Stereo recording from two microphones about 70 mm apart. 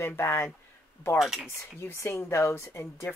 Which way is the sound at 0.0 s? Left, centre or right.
Left.